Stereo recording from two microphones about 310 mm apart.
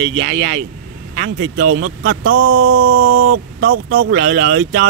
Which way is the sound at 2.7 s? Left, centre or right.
Right.